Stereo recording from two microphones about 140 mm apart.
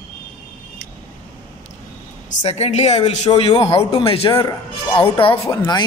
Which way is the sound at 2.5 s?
50° left (ahead or behind).